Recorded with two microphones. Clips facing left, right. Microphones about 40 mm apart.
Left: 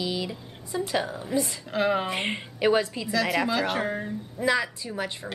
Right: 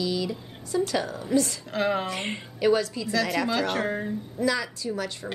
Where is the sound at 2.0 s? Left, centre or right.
Left.